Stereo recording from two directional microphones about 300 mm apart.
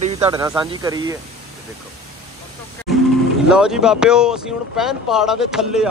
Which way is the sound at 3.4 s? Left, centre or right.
Centre.